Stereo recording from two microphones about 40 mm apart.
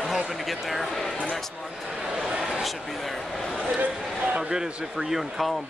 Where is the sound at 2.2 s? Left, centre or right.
Centre.